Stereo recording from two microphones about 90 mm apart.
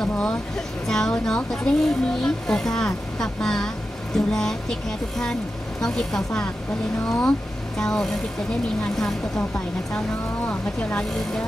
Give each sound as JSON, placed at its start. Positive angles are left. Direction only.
{"t": 0.0, "sound": "speech", "side_deg": 10}
{"t": 10.4, "sound": "speech", "side_deg": 20}